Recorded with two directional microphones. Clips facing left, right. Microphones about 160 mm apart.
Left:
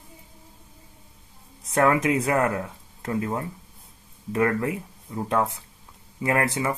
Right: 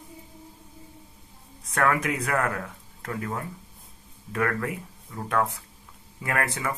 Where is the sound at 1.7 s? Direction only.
25° left (ahead or behind).